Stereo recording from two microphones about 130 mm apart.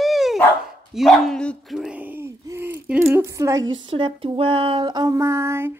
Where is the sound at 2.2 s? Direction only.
20° right (ahead or behind).